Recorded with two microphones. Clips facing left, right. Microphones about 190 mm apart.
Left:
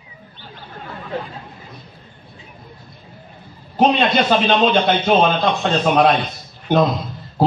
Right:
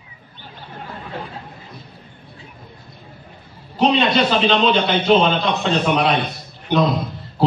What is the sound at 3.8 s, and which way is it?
A man's voice, 50° left (ahead or behind).